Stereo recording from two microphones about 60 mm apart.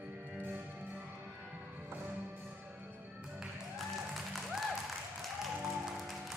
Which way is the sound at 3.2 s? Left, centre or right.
Centre.